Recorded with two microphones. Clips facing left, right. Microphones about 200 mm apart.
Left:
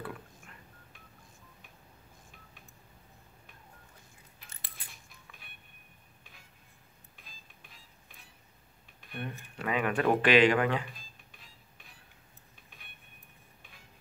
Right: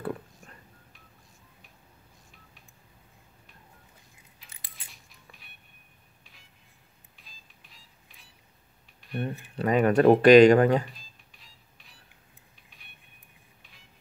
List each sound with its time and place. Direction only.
0.0 s a sound: 40° right (ahead or behind)
7.2 s music: 50° left (ahead or behind)
9.1 s speech: 35° right (ahead or behind)
10.9 s music: 50° left (ahead or behind)